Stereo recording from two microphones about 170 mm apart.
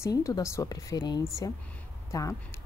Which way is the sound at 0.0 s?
20° left (ahead or behind).